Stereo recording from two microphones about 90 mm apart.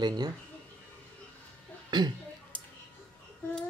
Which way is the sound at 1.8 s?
55° right (ahead or behind).